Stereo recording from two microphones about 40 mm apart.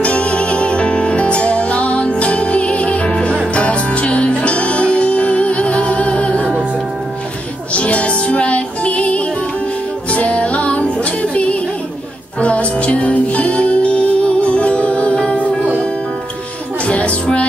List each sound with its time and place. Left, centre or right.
0.0 s music: left
7.7 s music: left
16.8 s music: left